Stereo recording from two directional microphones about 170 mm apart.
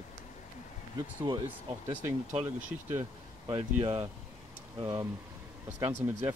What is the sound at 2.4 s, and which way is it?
Speech, 10° right (ahead or behind).